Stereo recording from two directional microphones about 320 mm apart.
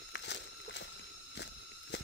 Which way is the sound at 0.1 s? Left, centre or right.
Left.